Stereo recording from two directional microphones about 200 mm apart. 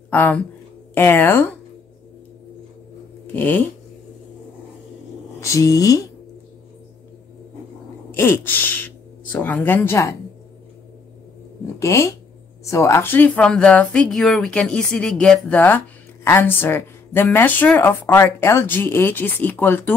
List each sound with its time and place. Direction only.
0.1 s speech: 10° left (ahead or behind)
3.3 s speech: 10° left (ahead or behind)
5.4 s speech: 15° left (ahead or behind)
8.2 s speech: 10° left (ahead or behind)
11.8 s speech: 15° left (ahead or behind)